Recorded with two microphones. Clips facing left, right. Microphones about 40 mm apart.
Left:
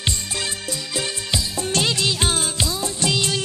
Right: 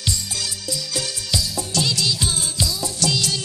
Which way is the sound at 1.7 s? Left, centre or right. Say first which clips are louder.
Left 2 dB; left.